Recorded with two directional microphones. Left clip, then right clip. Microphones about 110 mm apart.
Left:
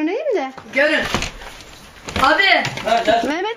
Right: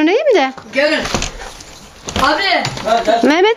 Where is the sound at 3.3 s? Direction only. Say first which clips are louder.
Right 11 dB; 65° right (ahead or behind).